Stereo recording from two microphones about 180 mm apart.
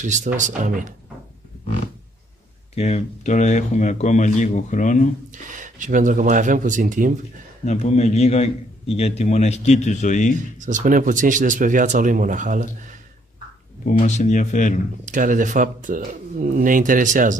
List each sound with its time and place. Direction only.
0.0 s speech: 40° right (ahead or behind)
2.7 s a man's voice: 35° left (ahead or behind)
5.3 s speech: 45° right (ahead or behind)
7.6 s a man's voice: 40° left (ahead or behind)
10.6 s speech: 45° right (ahead or behind)
13.8 s speech: 45° left (ahead or behind)
15.0 s speech: 45° right (ahead or behind)